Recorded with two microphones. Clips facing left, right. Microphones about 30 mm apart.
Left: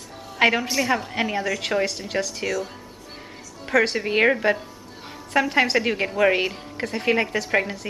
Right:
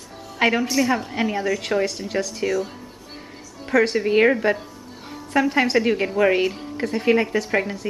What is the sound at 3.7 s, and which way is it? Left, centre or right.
Speech, centre.